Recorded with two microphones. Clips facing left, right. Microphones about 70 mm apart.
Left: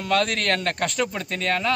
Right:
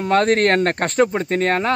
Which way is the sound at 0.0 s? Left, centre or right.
Right.